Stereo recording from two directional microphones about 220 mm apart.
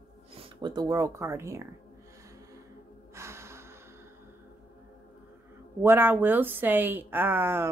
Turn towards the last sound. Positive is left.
turn(degrees=-10)  # may be behind; listen again after turning